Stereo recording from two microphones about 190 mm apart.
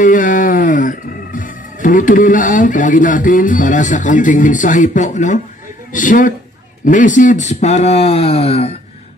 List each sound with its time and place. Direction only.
0.0 s speech: 45° left (ahead or behind)